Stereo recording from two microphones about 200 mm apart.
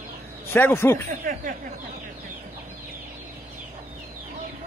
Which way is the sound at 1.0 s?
45° right (ahead or behind).